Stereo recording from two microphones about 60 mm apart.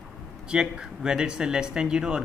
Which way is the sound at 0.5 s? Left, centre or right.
Centre.